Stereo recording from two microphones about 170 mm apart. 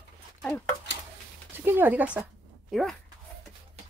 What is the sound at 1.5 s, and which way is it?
Speech, 15° right (ahead or behind).